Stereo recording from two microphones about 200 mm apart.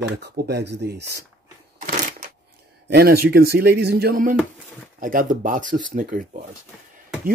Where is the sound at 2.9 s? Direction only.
50° right (ahead or behind).